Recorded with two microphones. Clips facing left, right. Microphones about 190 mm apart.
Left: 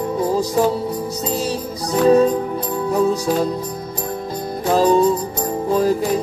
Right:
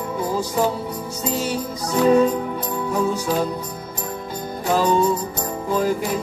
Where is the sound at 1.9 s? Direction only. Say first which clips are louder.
Left 2 dB; 35° left (ahead or behind).